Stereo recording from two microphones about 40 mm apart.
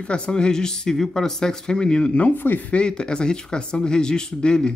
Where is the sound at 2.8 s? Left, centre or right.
Left.